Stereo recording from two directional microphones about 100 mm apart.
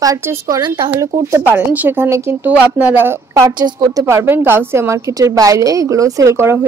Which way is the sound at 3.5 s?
45° right (ahead or behind).